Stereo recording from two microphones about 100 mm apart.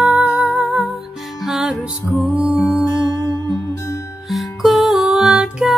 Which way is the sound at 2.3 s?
15° right (ahead or behind).